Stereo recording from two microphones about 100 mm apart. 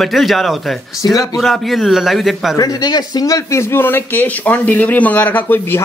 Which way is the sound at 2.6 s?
40° left (ahead or behind).